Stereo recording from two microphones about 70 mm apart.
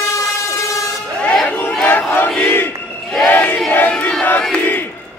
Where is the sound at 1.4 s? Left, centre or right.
Left.